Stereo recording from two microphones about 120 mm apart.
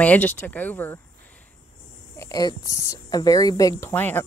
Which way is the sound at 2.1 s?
25° left (ahead or behind).